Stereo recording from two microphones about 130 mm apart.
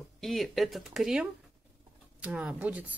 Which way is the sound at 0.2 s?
Centre (ahead or behind).